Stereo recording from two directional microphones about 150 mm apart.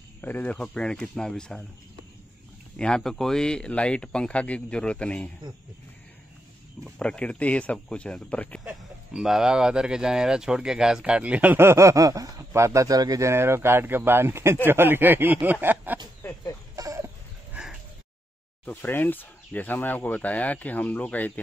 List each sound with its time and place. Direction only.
0.2 s speech: 10° left (ahead or behind)
2.8 s speech: 5° left (ahead or behind)
6.8 s speech: 5° left (ahead or behind)
8.6 s speech: 5° right (ahead or behind)
16.2 s chicken: 20° left (ahead or behind)
16.7 s chicken: 20° right (ahead or behind)
17.6 s a sound: 5° right (ahead or behind)
18.7 s speech: 10° left (ahead or behind)